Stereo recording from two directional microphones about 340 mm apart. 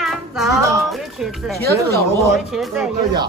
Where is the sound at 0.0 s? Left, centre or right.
Centre.